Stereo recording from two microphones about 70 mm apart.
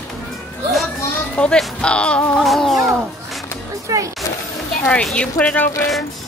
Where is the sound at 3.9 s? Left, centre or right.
Right.